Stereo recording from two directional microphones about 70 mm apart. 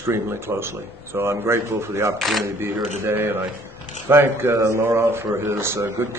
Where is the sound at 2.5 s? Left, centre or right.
Right.